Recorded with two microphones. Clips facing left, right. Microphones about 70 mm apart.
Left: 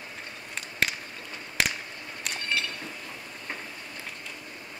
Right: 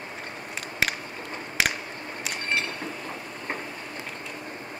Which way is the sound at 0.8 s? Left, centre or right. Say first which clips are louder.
Right 1 dB; centre.